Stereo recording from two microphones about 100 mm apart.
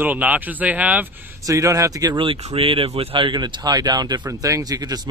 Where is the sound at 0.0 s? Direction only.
15° right (ahead or behind).